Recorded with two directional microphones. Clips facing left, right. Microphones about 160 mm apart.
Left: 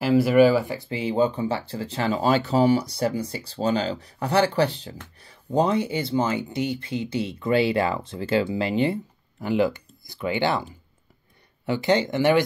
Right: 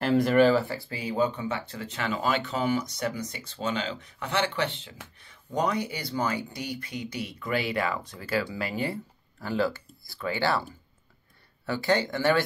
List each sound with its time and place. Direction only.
0.0 s speech: 5° left (ahead or behind)